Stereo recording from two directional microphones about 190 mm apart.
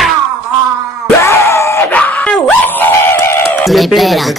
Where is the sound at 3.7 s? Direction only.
Centre (ahead or behind).